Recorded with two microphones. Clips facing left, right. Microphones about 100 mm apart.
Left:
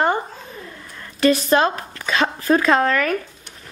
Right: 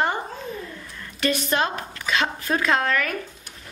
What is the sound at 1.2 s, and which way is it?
Speech, 35° left (ahead or behind).